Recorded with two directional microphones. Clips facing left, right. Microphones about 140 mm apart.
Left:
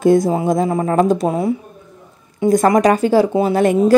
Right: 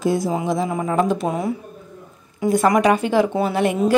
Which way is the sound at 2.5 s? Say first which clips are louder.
Left 3 dB; 40° left (ahead or behind).